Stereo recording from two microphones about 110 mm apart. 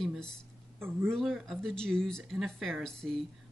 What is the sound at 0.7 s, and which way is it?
Speech, 20° right (ahead or behind).